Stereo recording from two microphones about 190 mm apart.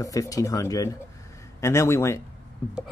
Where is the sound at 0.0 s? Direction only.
20° left (ahead or behind).